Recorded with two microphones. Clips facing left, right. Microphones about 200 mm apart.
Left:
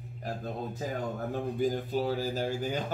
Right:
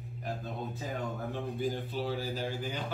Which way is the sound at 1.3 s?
45° left (ahead or behind).